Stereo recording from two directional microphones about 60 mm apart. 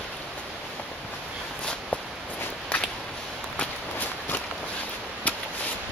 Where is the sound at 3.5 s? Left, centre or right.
Left.